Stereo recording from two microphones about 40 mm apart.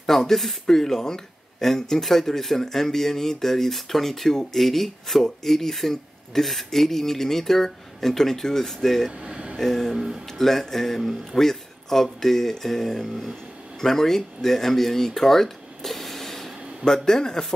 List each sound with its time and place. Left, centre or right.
0.0 s speech: centre
9.2 s a sound: right
9.6 s speech: centre
9.9 s speech: centre
10.2 s speech: centre